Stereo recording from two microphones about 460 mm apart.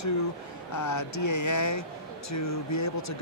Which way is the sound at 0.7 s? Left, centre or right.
Left.